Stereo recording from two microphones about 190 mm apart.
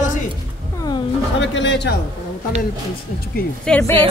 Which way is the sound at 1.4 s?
70° left (ahead or behind).